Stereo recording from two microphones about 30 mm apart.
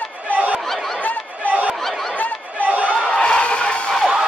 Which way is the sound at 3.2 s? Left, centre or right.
Left.